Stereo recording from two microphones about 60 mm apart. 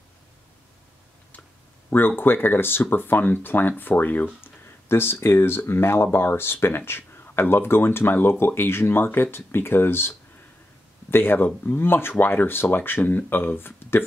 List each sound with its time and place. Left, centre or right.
1.9 s speech: left